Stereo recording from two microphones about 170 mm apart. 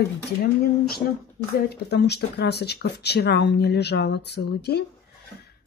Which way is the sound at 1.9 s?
75° left (ahead or behind).